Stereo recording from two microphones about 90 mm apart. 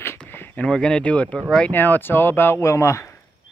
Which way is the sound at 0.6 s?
10° left (ahead or behind).